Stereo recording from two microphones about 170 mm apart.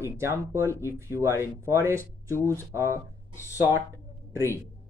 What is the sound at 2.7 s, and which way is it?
Speech, 15° right (ahead or behind).